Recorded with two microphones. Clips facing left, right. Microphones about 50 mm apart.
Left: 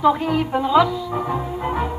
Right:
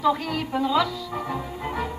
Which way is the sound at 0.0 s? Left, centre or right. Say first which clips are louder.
Left 6 dB; centre.